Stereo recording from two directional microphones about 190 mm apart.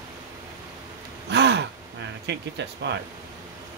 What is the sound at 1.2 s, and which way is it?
Gasp, 65° right (ahead or behind).